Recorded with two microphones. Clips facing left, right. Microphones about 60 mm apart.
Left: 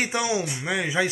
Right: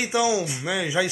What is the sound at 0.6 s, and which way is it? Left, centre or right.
Speech, left.